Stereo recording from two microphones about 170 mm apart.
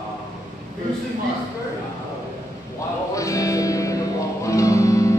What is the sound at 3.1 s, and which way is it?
Music, 20° left (ahead or behind).